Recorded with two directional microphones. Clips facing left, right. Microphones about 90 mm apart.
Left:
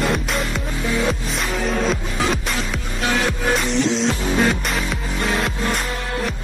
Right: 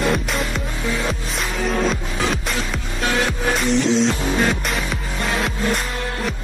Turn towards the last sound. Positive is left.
turn(degrees=0)  # may be behind; listen again after turning